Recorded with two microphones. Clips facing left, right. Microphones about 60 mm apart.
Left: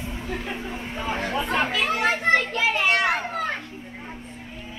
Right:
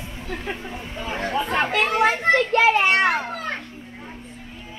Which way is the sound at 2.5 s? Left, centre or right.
Right.